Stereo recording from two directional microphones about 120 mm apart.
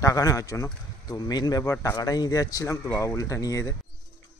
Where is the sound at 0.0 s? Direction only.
30° left (ahead or behind).